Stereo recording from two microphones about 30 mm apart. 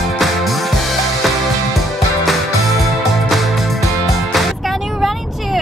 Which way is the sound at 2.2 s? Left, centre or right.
Centre.